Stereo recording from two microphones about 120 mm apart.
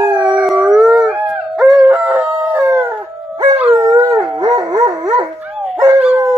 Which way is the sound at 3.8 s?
30° right (ahead or behind).